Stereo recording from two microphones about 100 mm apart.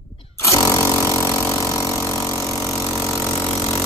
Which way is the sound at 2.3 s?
30° left (ahead or behind).